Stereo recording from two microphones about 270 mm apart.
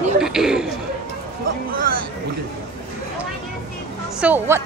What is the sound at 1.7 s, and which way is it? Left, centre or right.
Speech, right.